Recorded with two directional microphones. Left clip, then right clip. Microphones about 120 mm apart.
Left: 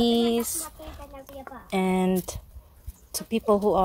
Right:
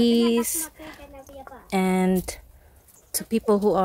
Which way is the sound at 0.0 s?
45° right (ahead or behind).